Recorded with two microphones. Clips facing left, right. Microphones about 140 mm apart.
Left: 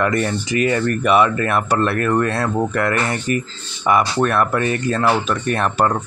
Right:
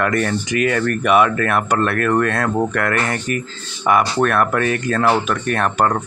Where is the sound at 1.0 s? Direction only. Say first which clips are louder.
Right 1 dB; 5° right (ahead or behind).